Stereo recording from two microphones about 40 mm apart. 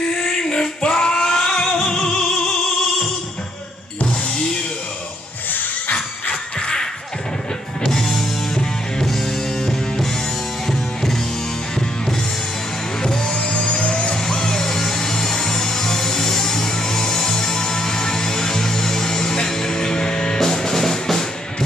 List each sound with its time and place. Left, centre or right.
0.2 s music: centre
10.7 s music: centre
13.0 s music: centre
14.2 s music: centre